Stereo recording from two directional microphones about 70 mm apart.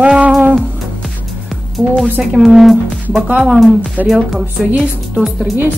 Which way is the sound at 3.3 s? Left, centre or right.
Centre.